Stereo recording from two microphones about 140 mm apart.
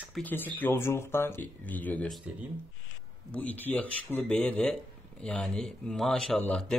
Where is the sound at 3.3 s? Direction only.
10° left (ahead or behind).